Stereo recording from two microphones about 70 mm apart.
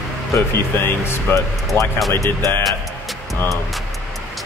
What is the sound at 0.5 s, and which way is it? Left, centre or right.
Speech, left.